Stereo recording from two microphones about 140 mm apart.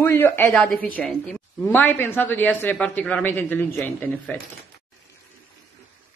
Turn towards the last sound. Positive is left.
turn(degrees=15)  # may be behind; listen again after turning